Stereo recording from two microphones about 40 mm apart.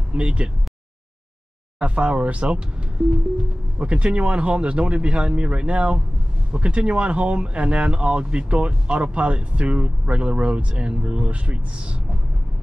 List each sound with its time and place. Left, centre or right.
0.1 s speech: right
1.8 s speech: right
3.8 s speech: right